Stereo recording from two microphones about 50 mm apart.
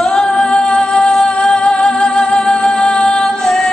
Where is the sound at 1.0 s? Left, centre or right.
Centre.